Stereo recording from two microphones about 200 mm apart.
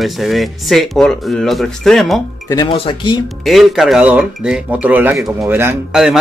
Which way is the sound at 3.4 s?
Centre (ahead or behind).